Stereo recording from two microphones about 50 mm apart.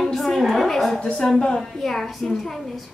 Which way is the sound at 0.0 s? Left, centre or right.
Centre.